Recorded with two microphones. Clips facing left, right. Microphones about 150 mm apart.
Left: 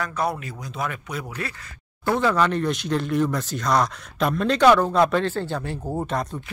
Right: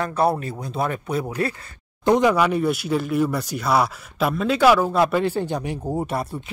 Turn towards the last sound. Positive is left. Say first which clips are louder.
# right 1 dB
turn(degrees=-10)  # may be behind; listen again after turning